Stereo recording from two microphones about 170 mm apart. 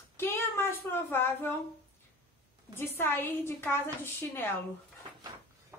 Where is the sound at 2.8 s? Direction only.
10° left (ahead or behind).